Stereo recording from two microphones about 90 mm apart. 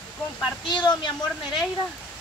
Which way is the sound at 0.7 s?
55° left (ahead or behind).